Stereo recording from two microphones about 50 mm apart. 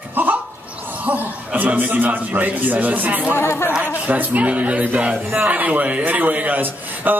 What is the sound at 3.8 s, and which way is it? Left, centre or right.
A man's voice, right.